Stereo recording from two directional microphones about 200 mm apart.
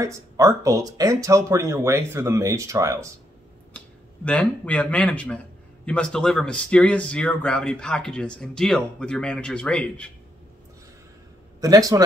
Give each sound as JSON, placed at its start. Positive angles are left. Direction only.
{"t": 0.0, "sound": "speech", "side_deg": -15}
{"t": 3.7, "sound": "a man's voice", "side_deg": 5}
{"t": 11.6, "sound": "speech", "side_deg": -15}